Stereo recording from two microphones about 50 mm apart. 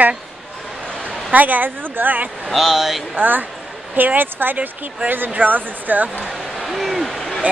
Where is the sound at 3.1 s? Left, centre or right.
Right.